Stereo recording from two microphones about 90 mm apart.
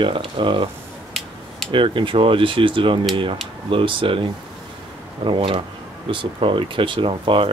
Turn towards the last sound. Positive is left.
turn(degrees=-75)  # may be behind; listen again after turning